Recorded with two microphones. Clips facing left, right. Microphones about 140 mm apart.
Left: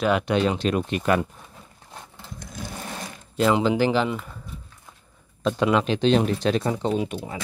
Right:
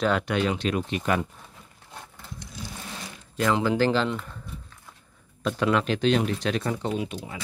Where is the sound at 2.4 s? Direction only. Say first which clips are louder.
Left 4 dB; 50° left (ahead or behind).